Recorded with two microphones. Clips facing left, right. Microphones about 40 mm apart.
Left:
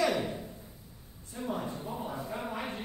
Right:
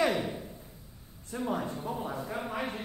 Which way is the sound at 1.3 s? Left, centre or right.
Right.